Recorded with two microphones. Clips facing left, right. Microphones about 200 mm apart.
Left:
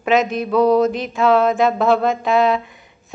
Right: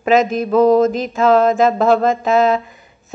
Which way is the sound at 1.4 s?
Centre (ahead or behind).